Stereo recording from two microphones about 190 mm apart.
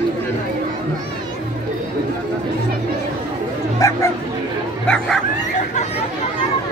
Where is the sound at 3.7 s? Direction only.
15° left (ahead or behind).